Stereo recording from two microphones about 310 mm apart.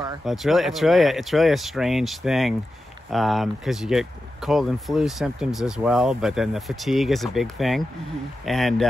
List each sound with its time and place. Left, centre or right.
0.2 s speech: centre